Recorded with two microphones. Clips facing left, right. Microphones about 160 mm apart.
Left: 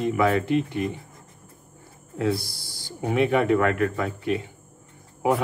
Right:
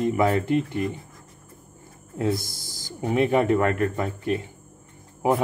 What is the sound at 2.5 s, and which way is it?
Speech, 45° right (ahead or behind).